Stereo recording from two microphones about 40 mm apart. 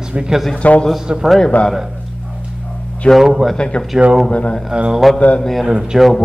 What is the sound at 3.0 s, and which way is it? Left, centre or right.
Speech, left.